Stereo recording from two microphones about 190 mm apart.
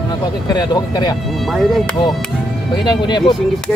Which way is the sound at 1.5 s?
Centre (ahead or behind).